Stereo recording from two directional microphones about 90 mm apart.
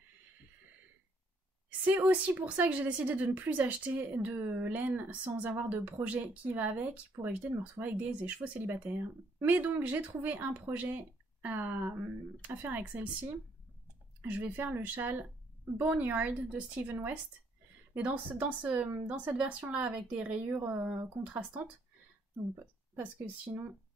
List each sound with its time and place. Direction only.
1.9 s a woman's voice: 20° right (ahead or behind)
14.2 s a woman's voice: 15° right (ahead or behind)
22.9 s speech: 20° right (ahead or behind)